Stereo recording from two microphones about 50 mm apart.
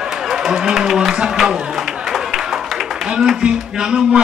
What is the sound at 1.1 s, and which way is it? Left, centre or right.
Speech, centre.